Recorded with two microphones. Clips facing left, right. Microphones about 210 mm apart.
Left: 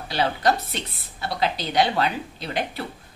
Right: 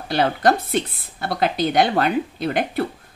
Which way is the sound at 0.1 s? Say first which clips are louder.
Right 4 dB; 50° right (ahead or behind).